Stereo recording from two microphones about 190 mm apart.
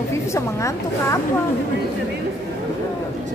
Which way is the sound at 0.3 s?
15° left (ahead or behind).